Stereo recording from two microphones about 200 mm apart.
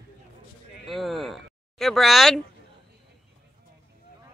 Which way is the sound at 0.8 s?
Centre (ahead or behind).